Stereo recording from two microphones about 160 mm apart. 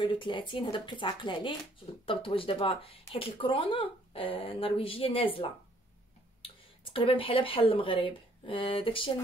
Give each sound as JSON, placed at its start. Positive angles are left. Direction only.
{"t": 0.0, "sound": "speech", "side_deg": 30}